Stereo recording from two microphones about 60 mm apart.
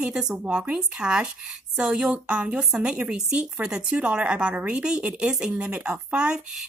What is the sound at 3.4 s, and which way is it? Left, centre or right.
Speech, centre.